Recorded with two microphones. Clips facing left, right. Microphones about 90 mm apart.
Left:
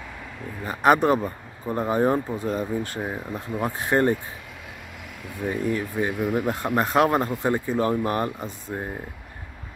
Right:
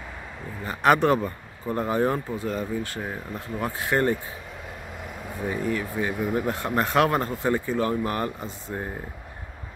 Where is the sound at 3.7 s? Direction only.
25° left (ahead or behind).